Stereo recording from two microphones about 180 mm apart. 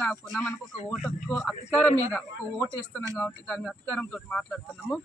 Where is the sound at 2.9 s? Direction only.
10° left (ahead or behind).